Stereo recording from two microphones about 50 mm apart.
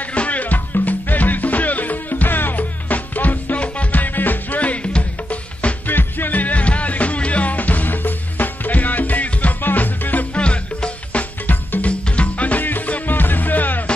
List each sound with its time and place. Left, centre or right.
0.1 s music: left
5.9 s music: left
10.3 s music: left
11.4 s music: left